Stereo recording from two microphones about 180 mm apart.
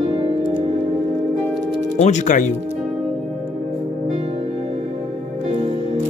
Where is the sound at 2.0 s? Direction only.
40° left (ahead or behind).